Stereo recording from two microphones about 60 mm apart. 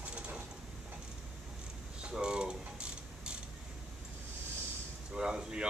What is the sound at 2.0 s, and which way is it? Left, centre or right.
Mechanisms, centre.